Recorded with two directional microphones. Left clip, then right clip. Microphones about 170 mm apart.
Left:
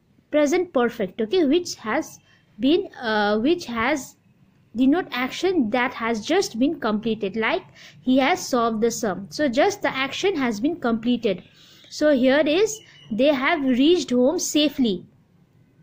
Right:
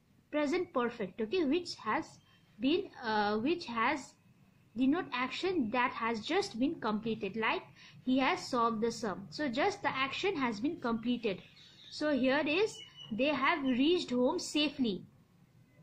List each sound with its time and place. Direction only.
0.3 s a woman's voice: 45° left (ahead or behind)